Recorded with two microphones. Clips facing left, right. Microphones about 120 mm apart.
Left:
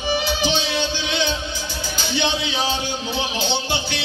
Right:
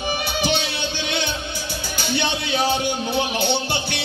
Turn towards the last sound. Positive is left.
turn(degrees=-55)  # may be behind; listen again after turning